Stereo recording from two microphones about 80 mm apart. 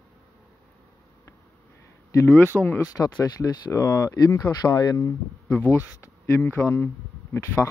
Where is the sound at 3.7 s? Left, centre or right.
Left.